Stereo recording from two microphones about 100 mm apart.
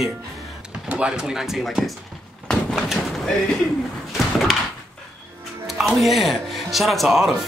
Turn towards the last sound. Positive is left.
turn(degrees=0)  # may be behind; listen again after turning